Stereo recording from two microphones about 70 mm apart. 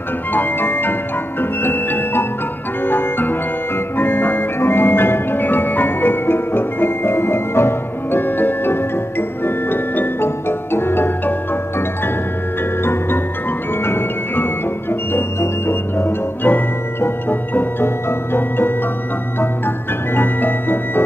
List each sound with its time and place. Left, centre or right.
0.3 s music: left
13.8 s music: left
20.2 s music: left